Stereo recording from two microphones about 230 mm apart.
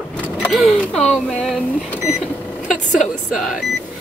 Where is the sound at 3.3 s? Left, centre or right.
Centre.